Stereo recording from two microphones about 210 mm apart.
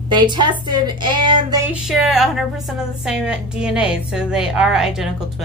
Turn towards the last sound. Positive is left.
turn(degrees=-5)  # may be behind; listen again after turning